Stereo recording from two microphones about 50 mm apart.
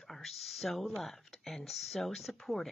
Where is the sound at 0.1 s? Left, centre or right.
Centre.